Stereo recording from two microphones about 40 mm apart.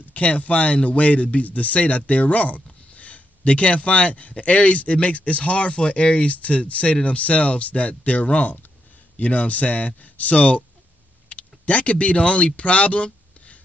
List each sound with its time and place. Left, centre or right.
0.1 s speech: left